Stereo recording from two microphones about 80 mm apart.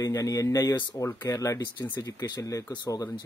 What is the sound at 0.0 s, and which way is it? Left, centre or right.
Speech, left.